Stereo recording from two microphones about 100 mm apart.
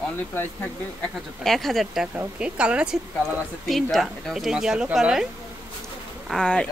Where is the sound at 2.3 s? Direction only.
10° right (ahead or behind).